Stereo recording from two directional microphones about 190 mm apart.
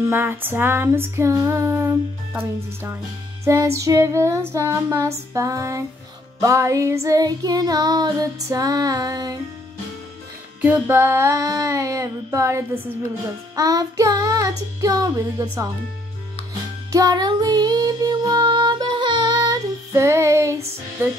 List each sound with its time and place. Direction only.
0.1 s female singing: 10° right (ahead or behind)
6.4 s child singing: 15° right (ahead or behind)
10.6 s female singing: 10° right (ahead or behind)
13.6 s child singing: 20° right (ahead or behind)
14.8 s female singing: 20° right (ahead or behind)
16.9 s music: 20° right (ahead or behind)